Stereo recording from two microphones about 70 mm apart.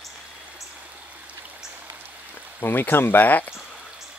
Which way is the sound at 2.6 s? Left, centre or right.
Left.